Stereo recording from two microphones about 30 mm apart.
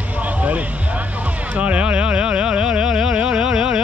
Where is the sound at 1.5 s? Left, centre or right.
Right.